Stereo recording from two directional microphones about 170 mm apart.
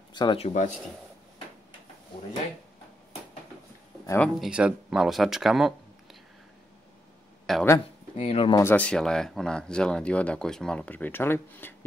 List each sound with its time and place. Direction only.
0.1 s speech: 30° left (ahead or behind)
4.0 s speech: 15° left (ahead or behind)
4.4 s speech: 5° right (ahead or behind)
7.5 s speech: centre (ahead or behind)
8.2 s speech: 35° left (ahead or behind)
8.5 s speech: 10° left (ahead or behind)